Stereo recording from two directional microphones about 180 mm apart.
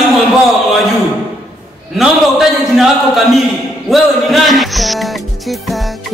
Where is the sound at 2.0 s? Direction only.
Centre (ahead or behind).